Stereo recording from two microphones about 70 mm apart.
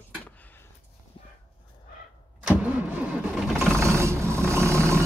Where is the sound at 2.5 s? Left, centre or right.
Right.